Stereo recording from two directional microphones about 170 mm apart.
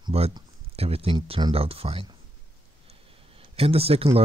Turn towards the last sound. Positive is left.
turn(degrees=-35)  # may be behind; listen again after turning